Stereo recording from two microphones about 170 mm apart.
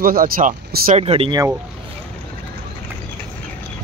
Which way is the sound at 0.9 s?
35° right (ahead or behind).